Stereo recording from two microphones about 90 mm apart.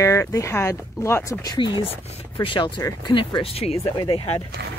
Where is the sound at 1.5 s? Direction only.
65° left (ahead or behind).